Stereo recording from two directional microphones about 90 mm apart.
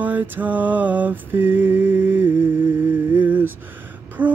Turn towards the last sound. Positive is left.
turn(degrees=-20)  # may be behind; listen again after turning